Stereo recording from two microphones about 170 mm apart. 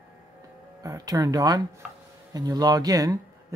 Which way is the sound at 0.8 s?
20° right (ahead or behind).